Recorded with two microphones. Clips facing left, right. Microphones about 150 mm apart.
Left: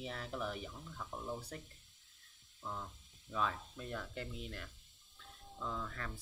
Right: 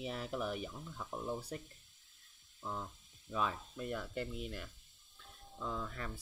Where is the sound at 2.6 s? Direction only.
15° right (ahead or behind).